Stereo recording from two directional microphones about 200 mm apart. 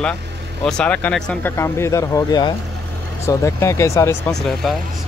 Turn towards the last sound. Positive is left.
turn(degrees=0)  # may be behind; listen again after turning